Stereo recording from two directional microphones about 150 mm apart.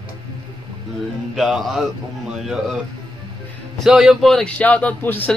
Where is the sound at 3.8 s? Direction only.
5° right (ahead or behind).